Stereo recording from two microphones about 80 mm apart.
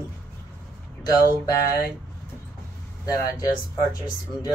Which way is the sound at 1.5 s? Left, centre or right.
Left.